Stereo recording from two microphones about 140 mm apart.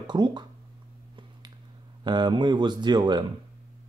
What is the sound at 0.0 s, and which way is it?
Speech, 30° right (ahead or behind).